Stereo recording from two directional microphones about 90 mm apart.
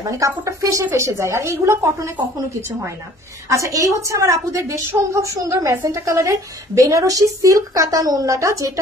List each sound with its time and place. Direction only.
0.0 s a woman's voice: 35° right (ahead or behind)
3.4 s a woman's voice: 35° right (ahead or behind)